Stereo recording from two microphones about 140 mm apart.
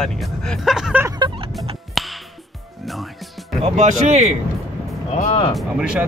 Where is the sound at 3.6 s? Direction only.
55° right (ahead or behind).